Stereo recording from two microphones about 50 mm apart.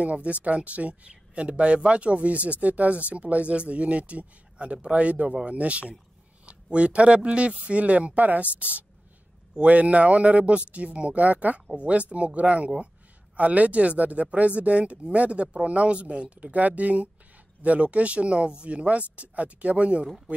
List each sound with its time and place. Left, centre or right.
0.0 s speech: right